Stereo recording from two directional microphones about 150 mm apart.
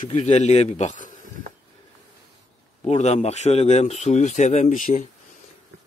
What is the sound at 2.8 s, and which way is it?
A man's voice, 45° left (ahead or behind).